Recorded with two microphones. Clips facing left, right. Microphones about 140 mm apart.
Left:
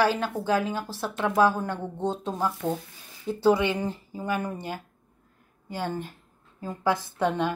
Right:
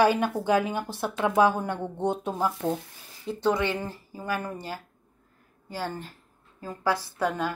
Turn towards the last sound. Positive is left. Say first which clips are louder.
# left 2 dB
turn(degrees=25)  # may be behind; listen again after turning